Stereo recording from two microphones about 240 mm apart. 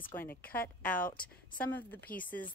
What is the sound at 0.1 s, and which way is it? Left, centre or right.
Speech, centre.